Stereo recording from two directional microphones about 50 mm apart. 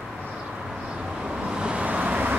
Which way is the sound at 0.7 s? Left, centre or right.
Centre.